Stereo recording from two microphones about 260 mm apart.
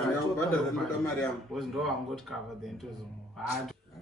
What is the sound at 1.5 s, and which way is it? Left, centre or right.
Speech, centre.